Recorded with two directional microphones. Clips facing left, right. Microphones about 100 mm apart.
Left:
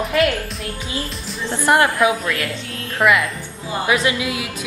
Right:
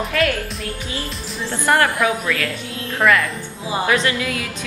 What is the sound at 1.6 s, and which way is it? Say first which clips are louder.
A woman's voice: left 2 dB; 20° left (ahead or behind).